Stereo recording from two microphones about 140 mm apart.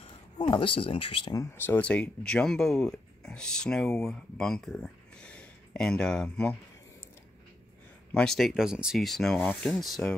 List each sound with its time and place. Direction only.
0.4 s speech: 35° left (ahead or behind)
1.3 s speech: 20° left (ahead or behind)
8.1 s speech: 5° left (ahead or behind)